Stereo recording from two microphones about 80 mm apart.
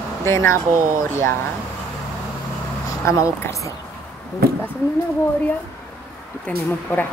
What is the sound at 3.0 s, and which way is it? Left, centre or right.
Speech, left.